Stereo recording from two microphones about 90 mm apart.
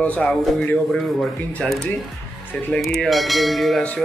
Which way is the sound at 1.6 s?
10° left (ahead or behind).